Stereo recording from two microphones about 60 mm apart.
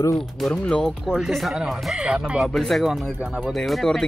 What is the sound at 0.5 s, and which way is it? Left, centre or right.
Speech, centre.